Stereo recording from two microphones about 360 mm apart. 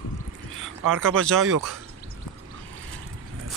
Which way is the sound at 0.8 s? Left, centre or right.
Right.